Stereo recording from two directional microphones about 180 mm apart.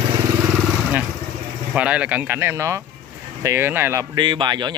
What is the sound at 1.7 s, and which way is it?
Speech, 5° right (ahead or behind).